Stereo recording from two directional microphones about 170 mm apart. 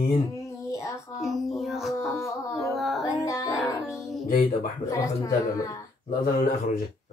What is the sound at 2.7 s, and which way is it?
Music, centre (ahead or behind).